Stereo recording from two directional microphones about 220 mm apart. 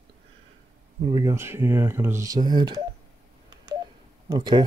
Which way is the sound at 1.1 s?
15° right (ahead or behind).